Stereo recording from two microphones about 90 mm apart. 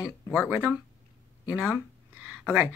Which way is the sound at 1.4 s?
20° right (ahead or behind).